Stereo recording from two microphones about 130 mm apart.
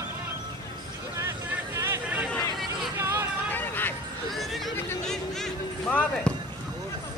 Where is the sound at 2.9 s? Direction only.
20° right (ahead or behind).